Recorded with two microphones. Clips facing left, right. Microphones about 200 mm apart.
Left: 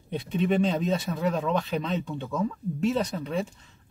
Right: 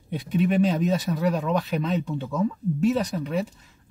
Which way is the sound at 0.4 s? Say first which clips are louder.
Right 3 dB; 5° right (ahead or behind).